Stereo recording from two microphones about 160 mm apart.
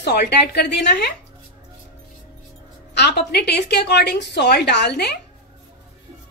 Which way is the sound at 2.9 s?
90° left.